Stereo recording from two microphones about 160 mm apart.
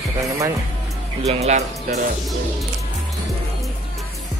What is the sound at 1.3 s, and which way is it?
Speech, 45° right (ahead or behind).